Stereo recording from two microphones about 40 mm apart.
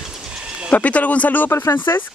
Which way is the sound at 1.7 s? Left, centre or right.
Left.